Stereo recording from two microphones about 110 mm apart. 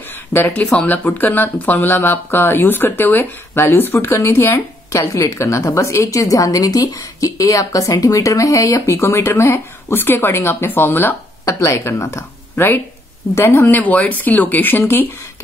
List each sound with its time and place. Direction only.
0.3 s speech: 15° left (ahead or behind)